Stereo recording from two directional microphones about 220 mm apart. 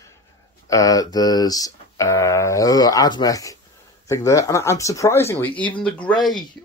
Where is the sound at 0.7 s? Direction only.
15° left (ahead or behind).